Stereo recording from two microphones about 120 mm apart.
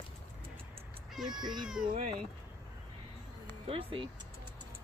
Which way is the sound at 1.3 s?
35° right (ahead or behind).